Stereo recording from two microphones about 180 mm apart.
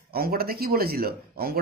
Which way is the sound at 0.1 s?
55° right (ahead or behind).